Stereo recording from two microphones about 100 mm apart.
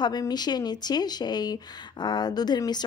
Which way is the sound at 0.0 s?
45° left (ahead or behind).